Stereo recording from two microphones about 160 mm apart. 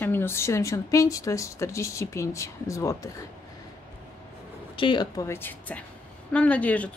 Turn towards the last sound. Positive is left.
turn(degrees=10)  # may be behind; listen again after turning